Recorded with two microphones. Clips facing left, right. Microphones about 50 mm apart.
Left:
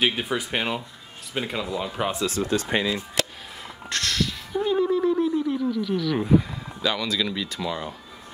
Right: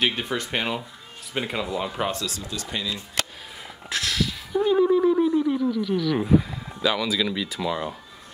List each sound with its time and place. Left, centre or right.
0.0 s speech: centre
2.2 s speech: left
3.9 s a sound: centre